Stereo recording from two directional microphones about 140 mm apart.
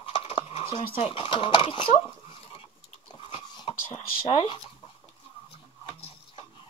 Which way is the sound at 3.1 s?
40° left (ahead or behind).